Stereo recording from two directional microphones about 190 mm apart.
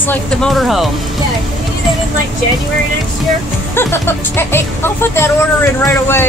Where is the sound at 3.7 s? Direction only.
10° left (ahead or behind).